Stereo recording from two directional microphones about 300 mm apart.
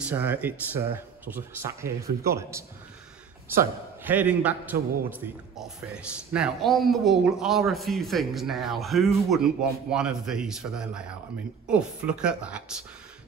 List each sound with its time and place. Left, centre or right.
0.0 s a man's voice: centre